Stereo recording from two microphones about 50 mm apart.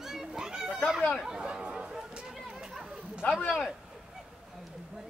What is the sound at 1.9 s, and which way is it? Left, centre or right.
Chatter, centre.